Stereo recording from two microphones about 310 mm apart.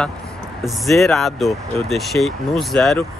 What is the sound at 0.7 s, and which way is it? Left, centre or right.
Speech, centre.